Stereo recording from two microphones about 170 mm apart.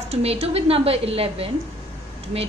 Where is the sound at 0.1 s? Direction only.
35° right (ahead or behind).